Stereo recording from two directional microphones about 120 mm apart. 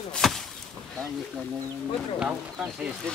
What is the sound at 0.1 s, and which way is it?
Chop, centre (ahead or behind).